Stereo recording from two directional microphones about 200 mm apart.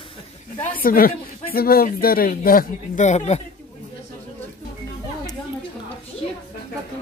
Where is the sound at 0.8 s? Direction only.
45° left (ahead or behind).